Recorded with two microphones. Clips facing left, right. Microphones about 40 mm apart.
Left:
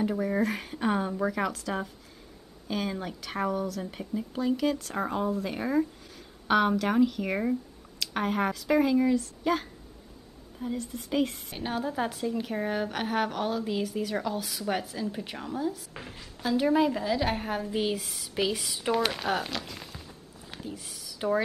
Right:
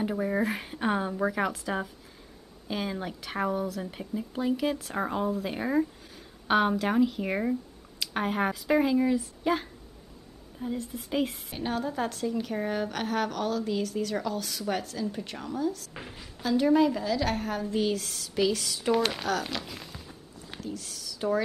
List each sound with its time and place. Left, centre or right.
0.0 s a woman's voice: centre
15.9 s speech: centre
16.4 s a woman's voice: centre
18.9 s speech: centre
20.6 s speech: centre